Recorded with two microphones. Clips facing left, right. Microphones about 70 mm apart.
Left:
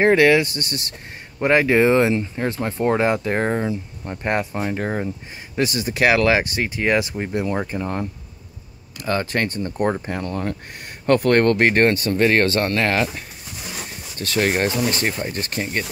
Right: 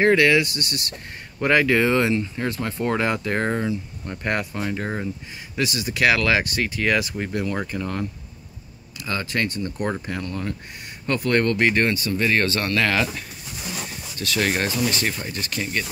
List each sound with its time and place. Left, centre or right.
0.0 s speech: left
5.6 s speech: left
9.0 s speech: left
11.1 s speech: left